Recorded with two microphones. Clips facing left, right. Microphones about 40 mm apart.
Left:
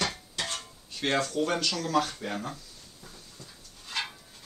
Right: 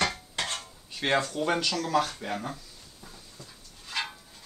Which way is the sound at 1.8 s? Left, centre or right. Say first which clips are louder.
Right 1 dB; centre.